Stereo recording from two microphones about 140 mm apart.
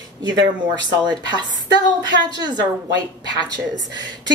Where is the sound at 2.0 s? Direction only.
30° right (ahead or behind).